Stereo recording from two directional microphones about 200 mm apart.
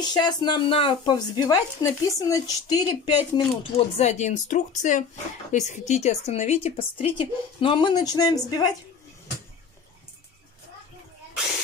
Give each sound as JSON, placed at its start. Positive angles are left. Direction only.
{"t": 0.0, "sound": "a woman's voice", "side_deg": 20}